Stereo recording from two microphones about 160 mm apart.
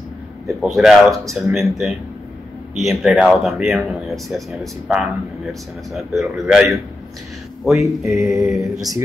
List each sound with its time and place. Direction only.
0.5 s speech: centre (ahead or behind)
8.0 s mantra: 20° right (ahead or behind)